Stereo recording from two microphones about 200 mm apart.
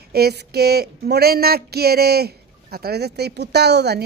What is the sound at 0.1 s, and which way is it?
Speech, 55° right (ahead or behind).